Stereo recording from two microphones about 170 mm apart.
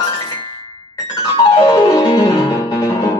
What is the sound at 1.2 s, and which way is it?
Music, 20° left (ahead or behind).